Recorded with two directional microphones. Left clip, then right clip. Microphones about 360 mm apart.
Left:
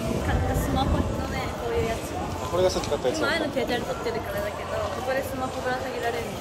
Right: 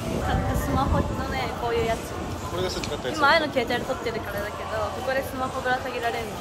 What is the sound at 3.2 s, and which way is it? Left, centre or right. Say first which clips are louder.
Speech: right 5 dB; centre.